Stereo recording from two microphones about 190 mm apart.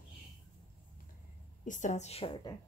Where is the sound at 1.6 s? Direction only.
40° left (ahead or behind).